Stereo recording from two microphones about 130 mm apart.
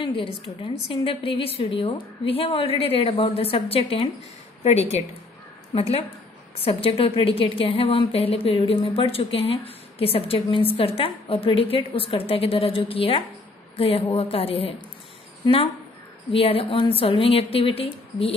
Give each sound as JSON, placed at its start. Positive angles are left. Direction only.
{"t": 0.0, "sound": "a woman's voice", "side_deg": 40}
{"t": 5.8, "sound": "a woman's voice", "side_deg": 45}